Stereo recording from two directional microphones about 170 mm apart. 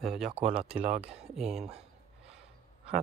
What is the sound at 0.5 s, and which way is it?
Speech, 5° right (ahead or behind).